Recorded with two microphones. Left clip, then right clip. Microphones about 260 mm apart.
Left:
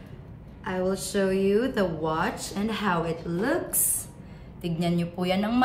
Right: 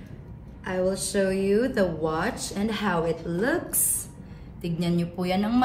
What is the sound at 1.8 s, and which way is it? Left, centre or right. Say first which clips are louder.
A woman's voice: right 1 dB; centre.